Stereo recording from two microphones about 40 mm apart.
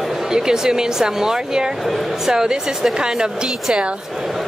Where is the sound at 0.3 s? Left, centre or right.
Centre.